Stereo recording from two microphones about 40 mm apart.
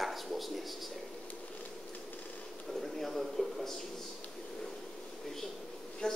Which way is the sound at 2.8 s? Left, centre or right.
Centre.